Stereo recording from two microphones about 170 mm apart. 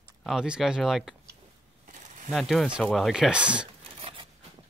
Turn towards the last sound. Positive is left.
turn(degrees=-30)  # may be behind; listen again after turning